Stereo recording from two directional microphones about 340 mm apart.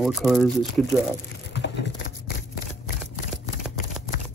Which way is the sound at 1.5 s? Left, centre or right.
Left.